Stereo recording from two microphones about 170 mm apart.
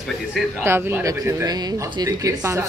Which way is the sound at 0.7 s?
15° right (ahead or behind).